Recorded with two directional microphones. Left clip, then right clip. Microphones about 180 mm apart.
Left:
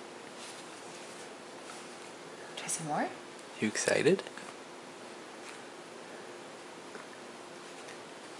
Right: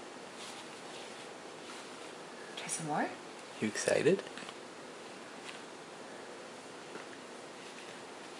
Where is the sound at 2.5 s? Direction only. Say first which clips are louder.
Left 1 dB; 15° left (ahead or behind).